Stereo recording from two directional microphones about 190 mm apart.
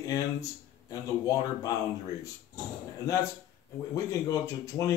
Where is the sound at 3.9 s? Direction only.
15° left (ahead or behind).